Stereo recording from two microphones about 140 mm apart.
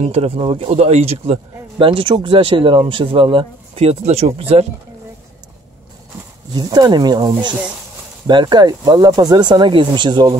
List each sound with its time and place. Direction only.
0.0 s speech: 45° right (ahead or behind)
6.5 s speech: 30° right (ahead or behind)